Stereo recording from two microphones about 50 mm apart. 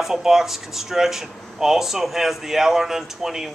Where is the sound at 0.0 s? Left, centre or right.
Centre.